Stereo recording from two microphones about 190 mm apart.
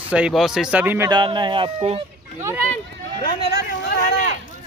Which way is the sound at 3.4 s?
60° left (ahead or behind).